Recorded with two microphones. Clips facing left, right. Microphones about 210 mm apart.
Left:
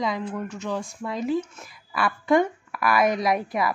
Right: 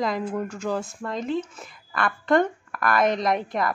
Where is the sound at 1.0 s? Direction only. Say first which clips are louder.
Left 1 dB; 5° left (ahead or behind).